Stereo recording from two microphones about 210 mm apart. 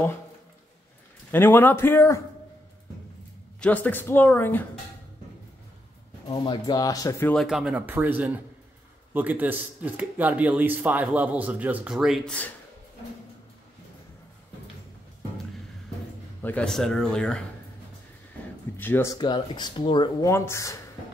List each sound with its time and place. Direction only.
1.3 s speech: 10° left (ahead or behind)
3.6 s speech: 10° left (ahead or behind)
6.2 s speech: 20° left (ahead or behind)
7.4 s speech: 5° right (ahead or behind)
16.4 s speech: 5° left (ahead or behind)
18.8 s speech: 10° left (ahead or behind)